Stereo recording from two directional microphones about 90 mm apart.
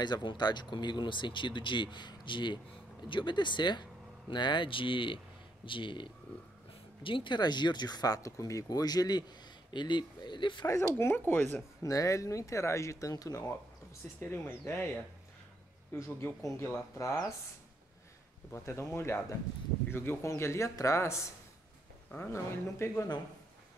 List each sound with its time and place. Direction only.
0.0 s speech: 55° left (ahead or behind)
9.7 s speech: 60° left (ahead or behind)
11.0 s speech: 25° left (ahead or behind)
11.8 s speech: 40° left (ahead or behind)
14.2 s speech: 25° left (ahead or behind)
16.0 s speech: 25° left (ahead or behind)
18.5 s speech: 30° left (ahead or behind)